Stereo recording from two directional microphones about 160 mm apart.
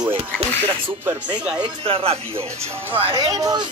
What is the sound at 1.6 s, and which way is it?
Speech, 35° right (ahead or behind).